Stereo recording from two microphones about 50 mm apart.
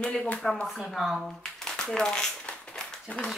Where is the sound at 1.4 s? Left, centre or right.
Centre.